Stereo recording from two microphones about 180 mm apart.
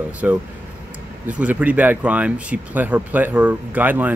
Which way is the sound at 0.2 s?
5° right (ahead or behind).